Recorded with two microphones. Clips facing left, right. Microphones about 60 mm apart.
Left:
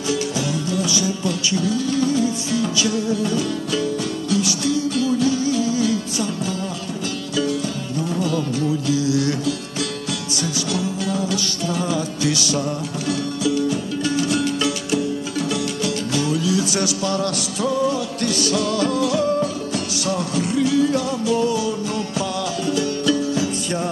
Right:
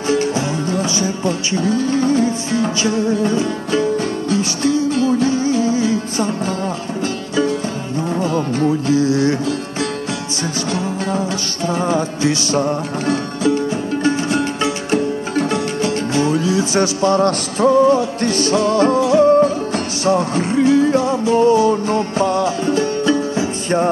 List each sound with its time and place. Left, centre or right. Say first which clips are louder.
0.1 s music: right 5 dB; right
8.2 s music: right 5 dB; right
10.7 s music: right 3 dB; right